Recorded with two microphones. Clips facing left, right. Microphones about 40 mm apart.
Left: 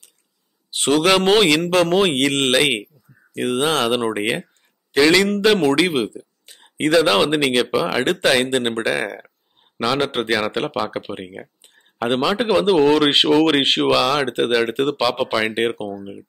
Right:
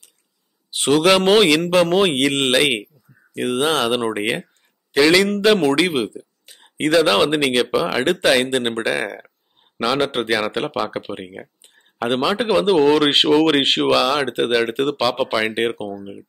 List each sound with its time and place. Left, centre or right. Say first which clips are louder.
0.7 s a man's voice: right 1 dB; centre